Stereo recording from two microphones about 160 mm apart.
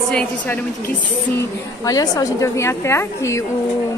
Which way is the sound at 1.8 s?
20° left (ahead or behind).